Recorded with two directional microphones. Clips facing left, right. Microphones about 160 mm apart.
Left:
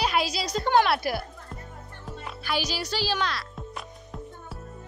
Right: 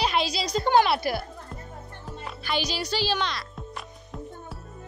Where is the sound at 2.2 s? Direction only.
5° left (ahead or behind).